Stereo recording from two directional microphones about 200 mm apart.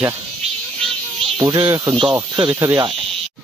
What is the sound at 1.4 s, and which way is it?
Speech, 20° right (ahead or behind).